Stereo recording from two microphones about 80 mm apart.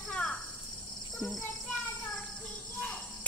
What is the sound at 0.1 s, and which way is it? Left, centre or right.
Caw, centre.